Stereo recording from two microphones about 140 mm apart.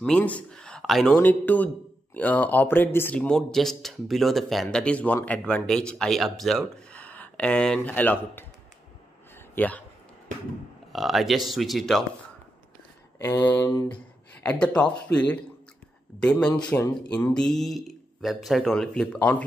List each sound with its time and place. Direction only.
0.0 s a man's voice: 10° left (ahead or behind)
9.3 s a sound: 10° left (ahead or behind)
10.9 s speech: centre (ahead or behind)
13.2 s speech: 15° left (ahead or behind)
13.8 s speech: 10° left (ahead or behind)